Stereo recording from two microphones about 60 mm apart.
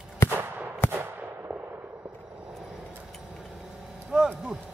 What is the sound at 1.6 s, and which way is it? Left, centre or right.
Fireworks, right.